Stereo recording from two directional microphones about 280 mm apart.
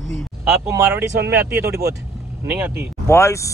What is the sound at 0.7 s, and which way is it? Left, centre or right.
Speech, centre.